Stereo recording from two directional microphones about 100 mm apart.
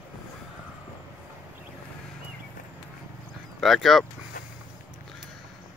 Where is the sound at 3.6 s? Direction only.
Centre (ahead or behind).